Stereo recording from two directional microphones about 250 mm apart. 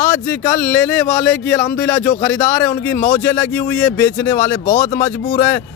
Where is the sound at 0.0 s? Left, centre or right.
Centre.